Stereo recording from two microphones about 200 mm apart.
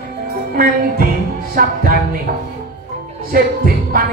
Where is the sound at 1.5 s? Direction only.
50° right (ahead or behind).